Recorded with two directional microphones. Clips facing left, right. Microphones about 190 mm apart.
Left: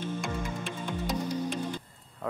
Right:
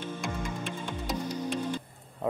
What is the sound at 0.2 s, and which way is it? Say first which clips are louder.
Music: even; centre (ahead or behind).